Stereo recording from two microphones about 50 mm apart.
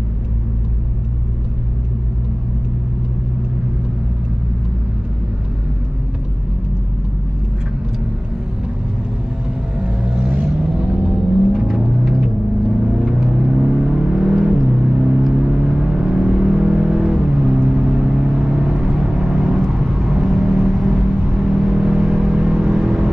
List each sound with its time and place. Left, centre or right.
9.8 s vehicle: right
11.6 s music: centre
12.8 s vehicle: centre